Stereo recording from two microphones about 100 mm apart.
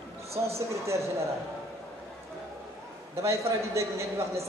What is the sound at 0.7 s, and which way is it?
Speech, 30° right (ahead or behind).